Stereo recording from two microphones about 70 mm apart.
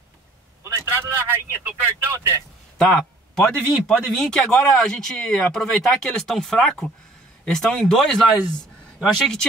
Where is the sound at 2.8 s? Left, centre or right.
Centre.